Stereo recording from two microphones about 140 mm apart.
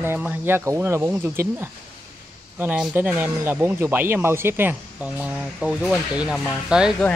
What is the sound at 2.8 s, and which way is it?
Speech, 10° right (ahead or behind).